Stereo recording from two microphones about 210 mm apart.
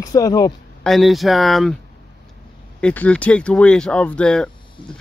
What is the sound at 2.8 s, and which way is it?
Speech, 5° left (ahead or behind).